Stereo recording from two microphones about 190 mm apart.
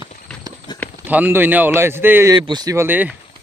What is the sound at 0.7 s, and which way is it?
Clip-clop, 20° left (ahead or behind).